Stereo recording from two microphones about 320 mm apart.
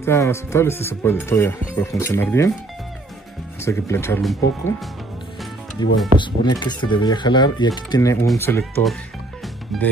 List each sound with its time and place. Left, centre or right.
0.0 s speech: centre
3.6 s speech: centre
5.8 s speech: left
6.1 s speech: centre
9.7 s music: centre